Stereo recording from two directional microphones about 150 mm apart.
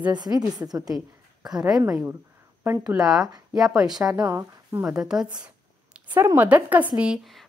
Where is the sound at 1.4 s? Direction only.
5° right (ahead or behind).